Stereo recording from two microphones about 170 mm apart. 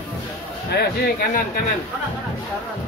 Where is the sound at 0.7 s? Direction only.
70° left (ahead or behind).